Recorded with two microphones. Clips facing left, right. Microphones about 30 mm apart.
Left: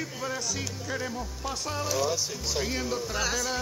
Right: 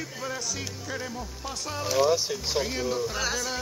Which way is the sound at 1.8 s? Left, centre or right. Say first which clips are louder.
Right 6 dB; centre.